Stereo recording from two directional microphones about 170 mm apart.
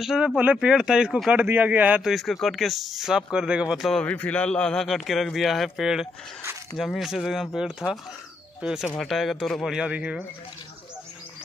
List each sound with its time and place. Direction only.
0.0 s speech: centre (ahead or behind)